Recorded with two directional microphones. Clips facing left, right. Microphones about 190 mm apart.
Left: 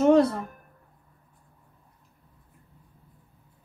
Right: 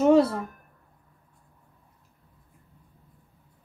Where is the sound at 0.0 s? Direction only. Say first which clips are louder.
Even; 5° right (ahead or behind).